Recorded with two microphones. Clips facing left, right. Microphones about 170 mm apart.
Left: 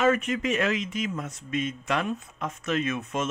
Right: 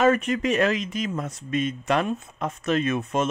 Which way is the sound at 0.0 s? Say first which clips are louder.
Right 3 dB; 35° right (ahead or behind).